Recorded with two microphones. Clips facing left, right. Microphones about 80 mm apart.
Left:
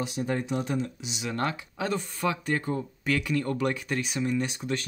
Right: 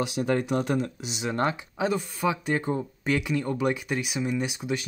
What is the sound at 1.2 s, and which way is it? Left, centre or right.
Speech, right.